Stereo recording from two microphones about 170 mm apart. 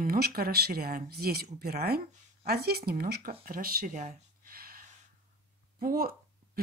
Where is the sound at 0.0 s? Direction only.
60° right (ahead or behind).